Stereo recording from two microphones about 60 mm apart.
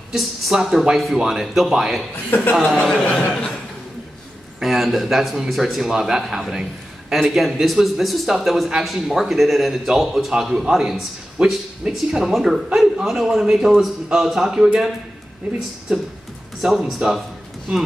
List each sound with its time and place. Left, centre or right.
0.1 s a man's voice: centre
2.3 s a man's voice: left
2.8 s speech: centre
4.6 s a man's voice: centre
6.2 s a man's voice: centre
6.5 s a sound: centre
7.2 s a man's voice: centre
16.6 s a man's voice: centre